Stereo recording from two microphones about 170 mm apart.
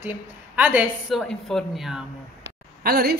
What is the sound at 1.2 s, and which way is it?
Speech, 5° left (ahead or behind).